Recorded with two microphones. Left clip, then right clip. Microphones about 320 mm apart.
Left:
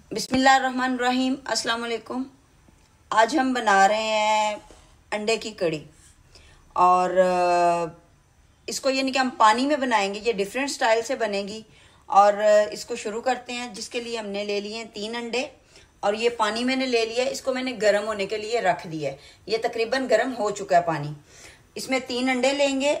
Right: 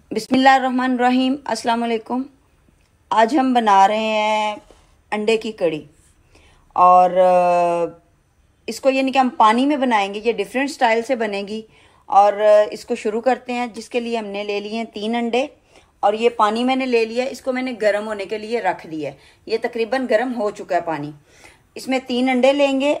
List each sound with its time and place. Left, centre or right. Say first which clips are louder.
0.4 s a woman's voice: right 4 dB; right